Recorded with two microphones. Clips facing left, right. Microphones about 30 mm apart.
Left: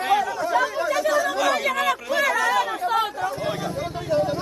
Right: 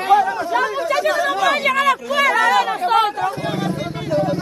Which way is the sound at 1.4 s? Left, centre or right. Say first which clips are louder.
Right 5 dB; right.